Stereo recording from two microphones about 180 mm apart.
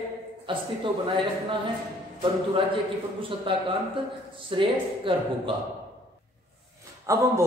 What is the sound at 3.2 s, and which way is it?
Speech, 30° right (ahead or behind).